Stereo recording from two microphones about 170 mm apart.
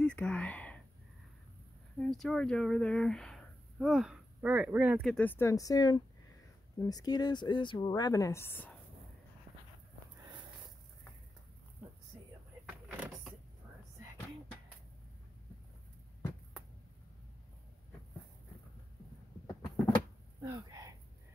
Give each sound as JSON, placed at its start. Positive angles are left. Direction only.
{"t": 0.0, "sound": "whispering", "side_deg": 5}
{"t": 2.0, "sound": "speech", "side_deg": 5}
{"t": 5.0, "sound": "speech", "side_deg": 5}
{"t": 12.6, "sound": "vehicle", "side_deg": -10}
{"t": 20.4, "sound": "a sound", "side_deg": -20}